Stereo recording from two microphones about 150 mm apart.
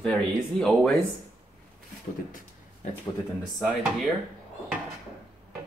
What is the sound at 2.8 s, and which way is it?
Speech, 55° left (ahead or behind).